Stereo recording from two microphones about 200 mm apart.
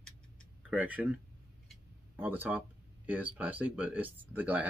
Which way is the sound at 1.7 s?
10° right (ahead or behind).